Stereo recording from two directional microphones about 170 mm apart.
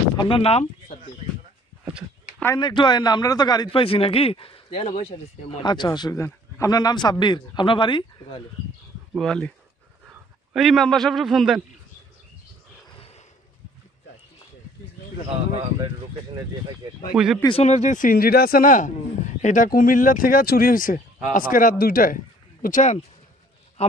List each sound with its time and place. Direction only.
0.2 s speech: 35° left (ahead or behind)
2.6 s a man's voice: 25° left (ahead or behind)
9.1 s a man's voice: 5° left (ahead or behind)
17.1 s speech: 5° right (ahead or behind)
17.5 s speech: 40° left (ahead or behind)
23.8 s a man's voice: 40° left (ahead or behind)